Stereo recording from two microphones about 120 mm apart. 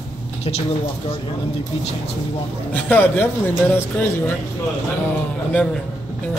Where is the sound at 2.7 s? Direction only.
15° left (ahead or behind).